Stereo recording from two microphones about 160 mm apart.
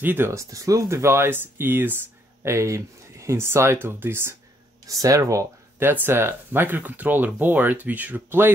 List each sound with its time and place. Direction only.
0.0 s speech: 15° right (ahead or behind)